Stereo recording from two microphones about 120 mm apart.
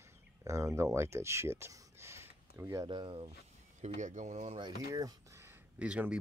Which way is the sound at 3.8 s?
85° right.